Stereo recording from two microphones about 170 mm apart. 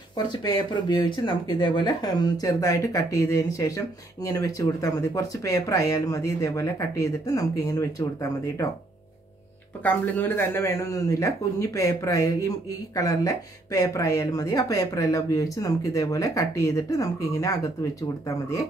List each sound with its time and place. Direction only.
0.3 s speech: 25° left (ahead or behind)
9.8 s speech: 10° left (ahead or behind)